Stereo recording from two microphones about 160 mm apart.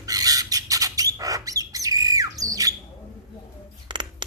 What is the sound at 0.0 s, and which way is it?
Bird, 25° right (ahead or behind).